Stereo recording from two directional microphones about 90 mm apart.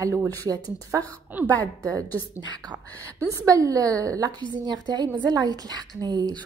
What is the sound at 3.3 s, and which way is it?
A woman's voice, 40° right (ahead or behind).